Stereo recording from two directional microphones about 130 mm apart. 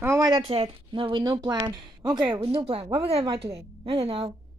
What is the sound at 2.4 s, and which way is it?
Speech, 45° right (ahead or behind).